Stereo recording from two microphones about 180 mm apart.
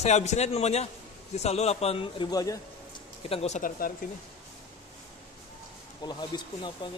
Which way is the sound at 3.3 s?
35° left (ahead or behind).